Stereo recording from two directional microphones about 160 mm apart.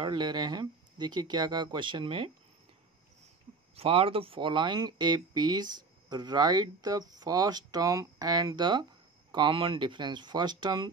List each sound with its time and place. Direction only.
0.0 s speech: 30° right (ahead or behind)
3.7 s speech: 35° right (ahead or behind)